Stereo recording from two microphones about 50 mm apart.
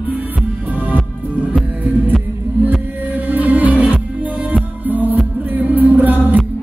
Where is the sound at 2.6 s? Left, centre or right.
Right.